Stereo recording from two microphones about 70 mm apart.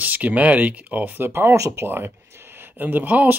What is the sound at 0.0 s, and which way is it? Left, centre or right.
Speech, right.